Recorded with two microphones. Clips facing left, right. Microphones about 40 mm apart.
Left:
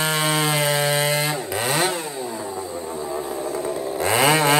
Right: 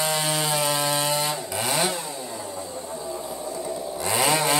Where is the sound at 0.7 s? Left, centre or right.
Left.